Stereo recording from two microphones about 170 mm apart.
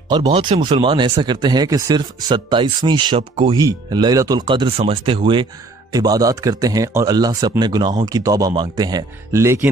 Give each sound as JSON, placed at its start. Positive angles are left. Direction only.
{"t": 0.1, "sound": "speech", "side_deg": -25}